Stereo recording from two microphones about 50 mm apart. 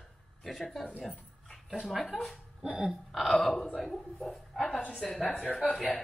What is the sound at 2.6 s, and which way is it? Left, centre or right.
Burping, centre.